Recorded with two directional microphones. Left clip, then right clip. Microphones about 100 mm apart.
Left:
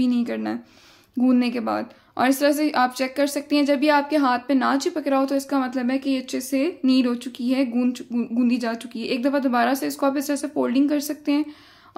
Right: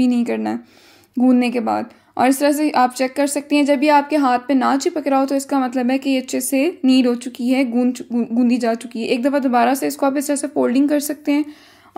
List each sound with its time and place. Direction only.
0.0 s a woman's voice: 45° right (ahead or behind)